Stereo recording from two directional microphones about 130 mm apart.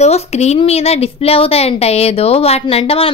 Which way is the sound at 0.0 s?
55° left (ahead or behind).